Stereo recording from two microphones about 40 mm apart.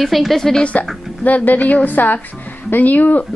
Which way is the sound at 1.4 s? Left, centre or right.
Left.